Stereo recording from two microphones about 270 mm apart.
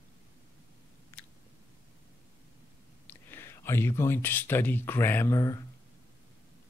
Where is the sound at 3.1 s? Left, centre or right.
Centre.